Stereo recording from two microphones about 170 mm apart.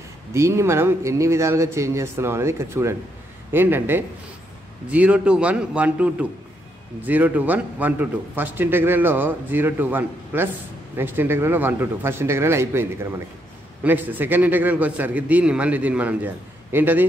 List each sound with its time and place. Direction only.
0.3 s a man's voice: 15° right (ahead or behind)